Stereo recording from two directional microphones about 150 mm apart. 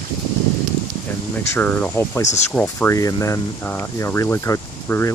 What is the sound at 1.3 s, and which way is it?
Speech, 10° left (ahead or behind).